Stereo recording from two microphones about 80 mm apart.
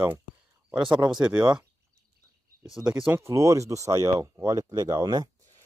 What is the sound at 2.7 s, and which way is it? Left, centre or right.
Speech, centre.